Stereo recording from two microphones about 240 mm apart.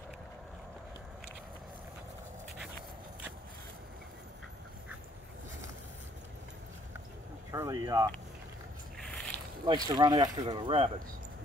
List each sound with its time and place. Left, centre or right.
7.5 s speech: centre
9.0 s boat: centre
9.7 s speech: centre